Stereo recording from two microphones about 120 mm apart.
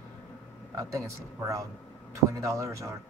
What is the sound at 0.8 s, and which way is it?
Speech, 25° right (ahead or behind).